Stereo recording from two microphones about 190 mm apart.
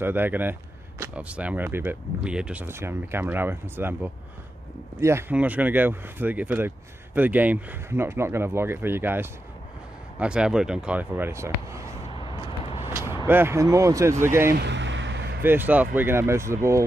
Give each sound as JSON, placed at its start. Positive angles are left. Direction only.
{"t": 0.0, "sound": "speech", "side_deg": -10}
{"t": 12.1, "sound": "vehicle", "side_deg": 30}
{"t": 13.3, "sound": "speech", "side_deg": -10}
{"t": 14.6, "sound": "a sound", "side_deg": -70}
{"t": 15.4, "sound": "speech", "side_deg": -10}